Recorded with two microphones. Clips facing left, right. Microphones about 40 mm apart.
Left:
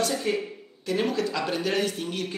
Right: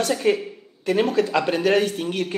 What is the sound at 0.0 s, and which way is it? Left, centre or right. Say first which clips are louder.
Speech: right 5 dB; right.